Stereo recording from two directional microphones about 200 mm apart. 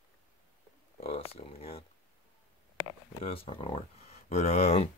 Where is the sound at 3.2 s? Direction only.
30° left (ahead or behind).